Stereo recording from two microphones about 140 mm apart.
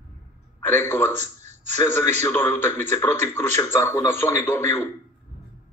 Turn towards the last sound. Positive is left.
turn(degrees=20)  # may be behind; listen again after turning